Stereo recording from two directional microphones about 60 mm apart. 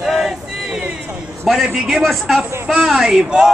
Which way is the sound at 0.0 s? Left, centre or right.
Centre.